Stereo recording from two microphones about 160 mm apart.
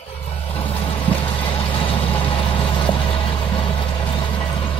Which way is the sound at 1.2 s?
35° left (ahead or behind).